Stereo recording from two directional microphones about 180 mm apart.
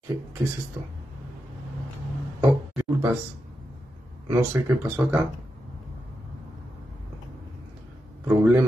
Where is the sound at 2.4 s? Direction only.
15° right (ahead or behind).